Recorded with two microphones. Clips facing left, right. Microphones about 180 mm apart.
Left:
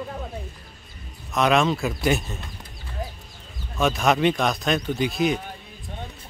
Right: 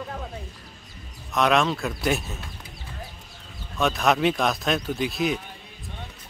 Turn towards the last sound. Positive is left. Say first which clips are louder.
# left 3 dB
turn(degrees=0)  # may be behind; listen again after turning